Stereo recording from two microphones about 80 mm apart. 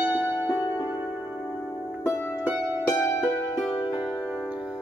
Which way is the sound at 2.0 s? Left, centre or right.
Left.